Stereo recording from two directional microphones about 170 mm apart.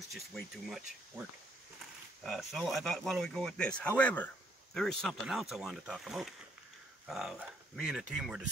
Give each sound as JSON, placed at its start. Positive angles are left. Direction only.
{"t": 0.1, "sound": "speech", "side_deg": 0}
{"t": 2.2, "sound": "speech", "side_deg": 0}